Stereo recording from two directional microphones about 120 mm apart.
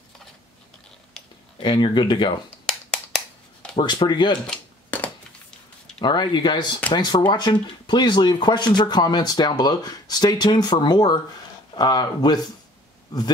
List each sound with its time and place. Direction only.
1.6 s speech: 40° left (ahead or behind)
3.7 s speech: 40° left (ahead or behind)
4.5 s a sound: 15° left (ahead or behind)
5.9 s speech: 40° left (ahead or behind)